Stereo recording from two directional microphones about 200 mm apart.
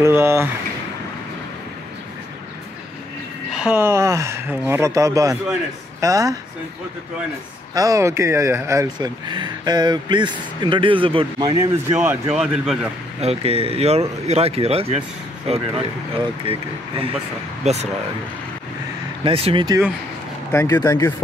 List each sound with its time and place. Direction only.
0.0 s speech: 15° right (ahead or behind)
3.5 s speech: 5° right (ahead or behind)
7.7 s speech: 15° right (ahead or behind); by 12.7 s centre (ahead or behind)
13.2 s speech: 30° right (ahead or behind)
17.6 s speech: 35° right (ahead or behind)
19.2 s speech: 25° right (ahead or behind)
20.5 s speech: 15° left (ahead or behind)